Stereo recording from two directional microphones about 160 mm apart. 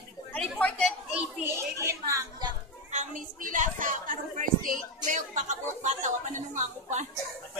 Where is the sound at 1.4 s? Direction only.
15° right (ahead or behind).